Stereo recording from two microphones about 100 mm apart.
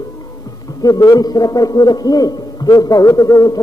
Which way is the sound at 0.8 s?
40° left (ahead or behind).